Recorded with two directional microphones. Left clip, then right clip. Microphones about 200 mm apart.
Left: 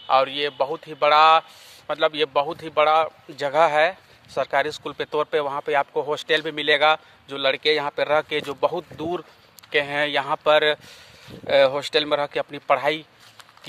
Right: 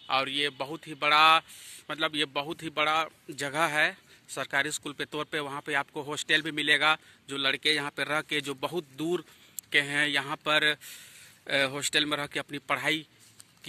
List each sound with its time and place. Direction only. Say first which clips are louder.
0.1 s speech: left 8 dB; centre (ahead or behind)